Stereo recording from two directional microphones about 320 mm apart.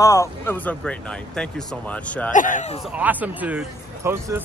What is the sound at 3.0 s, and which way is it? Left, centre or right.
Speech, centre.